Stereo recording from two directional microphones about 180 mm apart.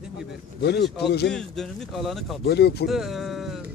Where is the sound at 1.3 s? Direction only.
5° left (ahead or behind).